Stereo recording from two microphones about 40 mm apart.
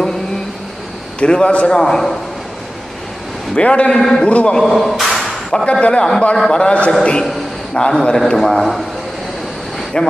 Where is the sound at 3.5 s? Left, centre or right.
Left.